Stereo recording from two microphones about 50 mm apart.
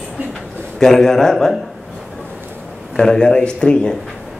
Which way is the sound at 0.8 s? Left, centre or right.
Centre.